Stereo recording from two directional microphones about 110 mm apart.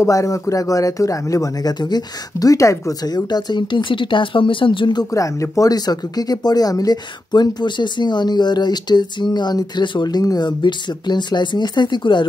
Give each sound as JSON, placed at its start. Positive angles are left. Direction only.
{"t": 0.0, "sound": "speech", "side_deg": 30}
{"t": 5.1, "sound": "speech", "side_deg": 30}